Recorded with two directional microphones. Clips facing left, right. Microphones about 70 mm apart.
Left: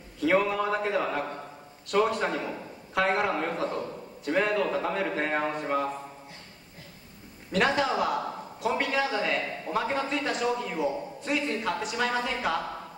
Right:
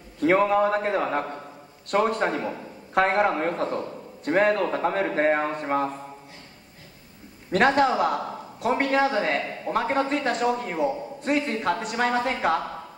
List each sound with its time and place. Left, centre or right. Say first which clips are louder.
0.2 s a man's voice: right 5 dB; right
7.5 s a man's voice: right 5 dB; right